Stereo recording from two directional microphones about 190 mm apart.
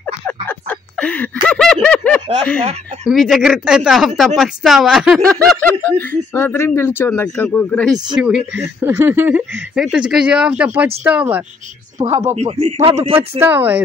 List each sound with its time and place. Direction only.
0.5 s a sound: 10° left (ahead or behind)
3.1 s speech: centre (ahead or behind)
12.0 s speech: 20° right (ahead or behind)
12.4 s speech: 35° right (ahead or behind)
13.4 s speech: 10° right (ahead or behind)